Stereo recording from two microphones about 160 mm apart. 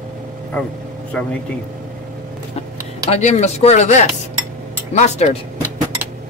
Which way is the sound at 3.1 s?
45° left (ahead or behind).